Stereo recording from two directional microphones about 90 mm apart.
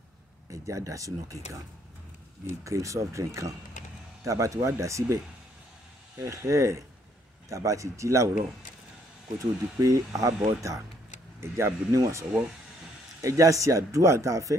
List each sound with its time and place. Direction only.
0.5 s speech: 35° right (ahead or behind)
9.4 s speech: 40° right (ahead or behind)